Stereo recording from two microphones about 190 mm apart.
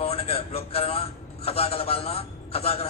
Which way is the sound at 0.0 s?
30° left (ahead or behind).